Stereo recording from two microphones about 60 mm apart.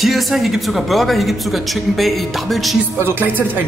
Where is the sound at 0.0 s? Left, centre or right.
Centre.